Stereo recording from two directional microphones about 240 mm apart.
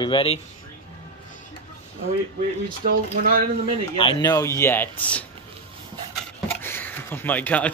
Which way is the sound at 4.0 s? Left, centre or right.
Centre.